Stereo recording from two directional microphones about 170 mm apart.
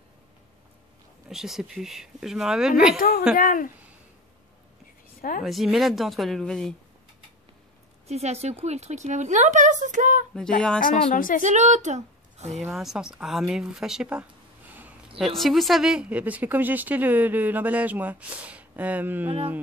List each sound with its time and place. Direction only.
1.3 s speech: 5° right (ahead or behind)
3.0 s a woman's voice: 60° left (ahead or behind)
5.4 s speech: centre (ahead or behind)
8.1 s speech: 40° right (ahead or behind)
10.8 s speech: 55° left (ahead or behind)
11.4 s speech: 45° right (ahead or behind)
12.7 s a woman's voice: 5° right (ahead or behind)